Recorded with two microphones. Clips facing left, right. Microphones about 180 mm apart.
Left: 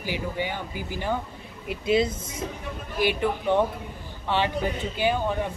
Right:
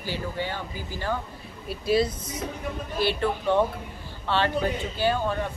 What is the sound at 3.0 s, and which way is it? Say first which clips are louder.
A woman's voice: left 1 dB; 15° left (ahead or behind).